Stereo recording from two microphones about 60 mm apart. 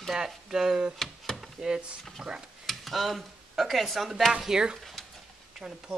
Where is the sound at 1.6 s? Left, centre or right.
Centre.